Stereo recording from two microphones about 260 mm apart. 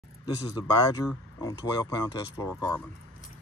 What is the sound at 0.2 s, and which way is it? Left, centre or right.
Speech, centre.